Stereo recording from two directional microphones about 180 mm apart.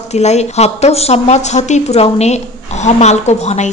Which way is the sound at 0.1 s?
40° left (ahead or behind).